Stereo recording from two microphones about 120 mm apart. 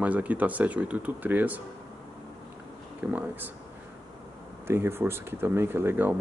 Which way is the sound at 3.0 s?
15° right (ahead or behind).